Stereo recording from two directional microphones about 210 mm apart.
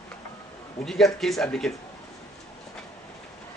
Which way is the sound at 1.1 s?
Centre (ahead or behind).